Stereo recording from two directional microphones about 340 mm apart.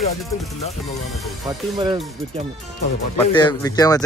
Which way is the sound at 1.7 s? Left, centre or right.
Centre.